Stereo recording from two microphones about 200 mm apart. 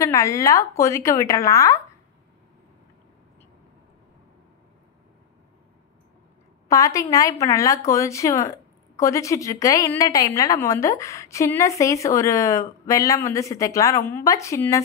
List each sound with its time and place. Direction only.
0.0 s speech: 15° left (ahead or behind)
6.7 s speech: 15° left (ahead or behind)